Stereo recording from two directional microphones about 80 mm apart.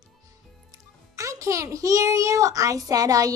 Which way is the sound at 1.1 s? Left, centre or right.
Right.